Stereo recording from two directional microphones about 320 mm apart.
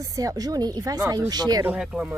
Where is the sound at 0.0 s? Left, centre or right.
Centre.